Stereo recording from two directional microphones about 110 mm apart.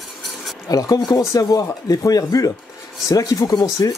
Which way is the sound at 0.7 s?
35° left (ahead or behind).